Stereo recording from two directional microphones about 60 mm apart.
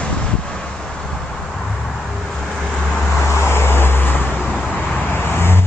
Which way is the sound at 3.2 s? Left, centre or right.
Left.